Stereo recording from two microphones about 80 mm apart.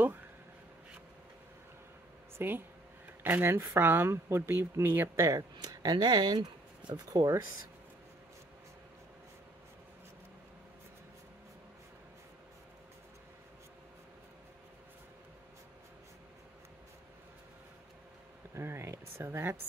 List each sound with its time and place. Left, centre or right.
2.3 s speech: right
5.6 s speech: right
7.1 s speech: right
18.5 s a sound: right